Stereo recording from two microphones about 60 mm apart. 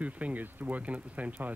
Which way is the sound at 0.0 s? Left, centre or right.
Right.